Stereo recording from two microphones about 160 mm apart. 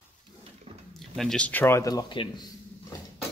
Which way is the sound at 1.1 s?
5° left (ahead or behind).